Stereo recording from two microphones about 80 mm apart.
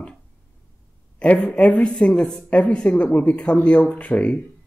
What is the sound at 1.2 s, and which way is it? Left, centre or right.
Speech, centre.